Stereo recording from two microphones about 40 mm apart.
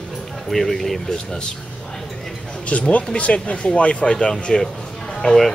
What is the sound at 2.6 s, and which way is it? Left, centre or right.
Speech, left.